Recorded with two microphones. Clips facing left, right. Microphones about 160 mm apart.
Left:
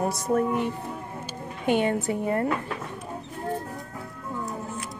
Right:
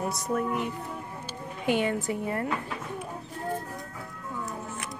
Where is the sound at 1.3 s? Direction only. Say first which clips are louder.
Left 3 dB; 20° left (ahead or behind).